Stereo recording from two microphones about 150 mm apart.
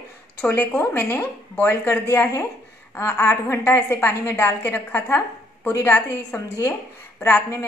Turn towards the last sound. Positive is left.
turn(degrees=15)  # may be behind; listen again after turning